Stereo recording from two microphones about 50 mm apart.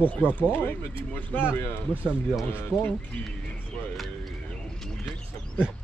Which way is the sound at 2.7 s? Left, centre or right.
Centre.